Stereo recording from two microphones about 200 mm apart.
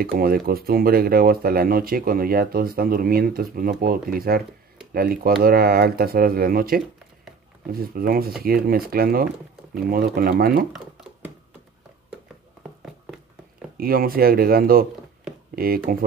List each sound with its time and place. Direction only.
0.0 s speech: 50° right (ahead or behind)
13.7 s speech: 50° right (ahead or behind)